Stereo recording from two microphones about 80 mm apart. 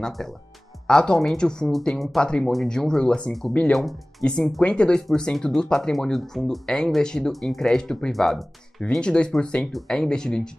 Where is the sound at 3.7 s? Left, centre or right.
Centre.